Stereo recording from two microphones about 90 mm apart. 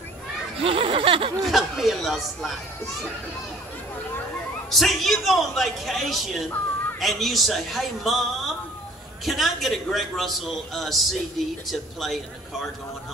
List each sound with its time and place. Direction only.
0.6 s speech: 85° right
1.4 s a man's voice: centre (ahead or behind)
4.6 s a man's voice: centre (ahead or behind)